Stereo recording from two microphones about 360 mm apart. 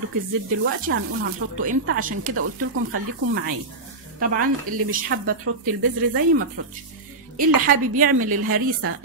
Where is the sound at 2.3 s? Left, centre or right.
Right.